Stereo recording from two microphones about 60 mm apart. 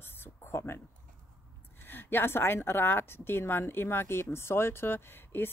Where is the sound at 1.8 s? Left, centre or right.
Left.